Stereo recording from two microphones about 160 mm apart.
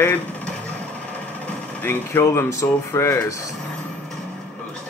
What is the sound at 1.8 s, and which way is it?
Speech, 15° left (ahead or behind).